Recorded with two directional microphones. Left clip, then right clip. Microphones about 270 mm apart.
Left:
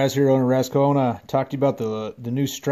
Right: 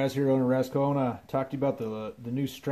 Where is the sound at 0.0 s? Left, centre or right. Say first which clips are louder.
Left 7 dB; left.